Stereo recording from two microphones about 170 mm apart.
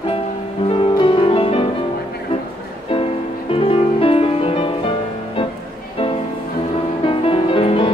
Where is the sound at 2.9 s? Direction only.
35° left (ahead or behind).